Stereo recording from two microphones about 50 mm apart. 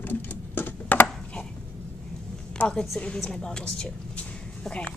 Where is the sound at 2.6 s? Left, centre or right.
Left.